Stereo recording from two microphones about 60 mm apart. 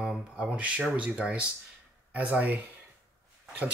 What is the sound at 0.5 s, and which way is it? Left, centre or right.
Speech, right.